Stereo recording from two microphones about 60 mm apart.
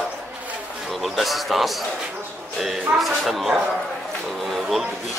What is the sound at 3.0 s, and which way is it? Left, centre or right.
Speech, centre.